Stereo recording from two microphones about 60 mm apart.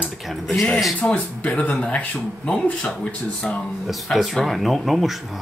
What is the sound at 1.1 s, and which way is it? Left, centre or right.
Speech, left.